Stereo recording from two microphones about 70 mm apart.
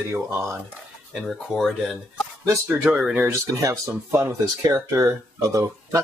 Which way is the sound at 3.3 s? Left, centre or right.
Right.